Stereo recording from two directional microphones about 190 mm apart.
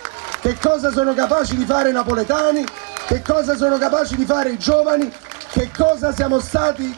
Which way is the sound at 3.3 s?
30° right (ahead or behind).